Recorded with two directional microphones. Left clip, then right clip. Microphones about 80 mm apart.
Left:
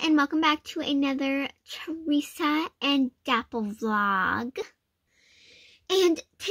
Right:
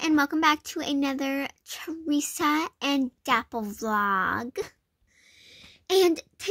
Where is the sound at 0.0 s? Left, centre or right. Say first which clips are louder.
Even; right.